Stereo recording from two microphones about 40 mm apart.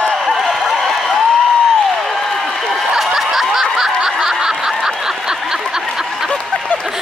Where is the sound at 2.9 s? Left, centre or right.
Centre.